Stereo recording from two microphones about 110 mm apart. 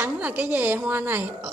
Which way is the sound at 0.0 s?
15° right (ahead or behind).